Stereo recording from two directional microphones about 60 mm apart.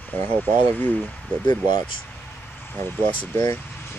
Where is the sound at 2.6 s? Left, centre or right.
Left.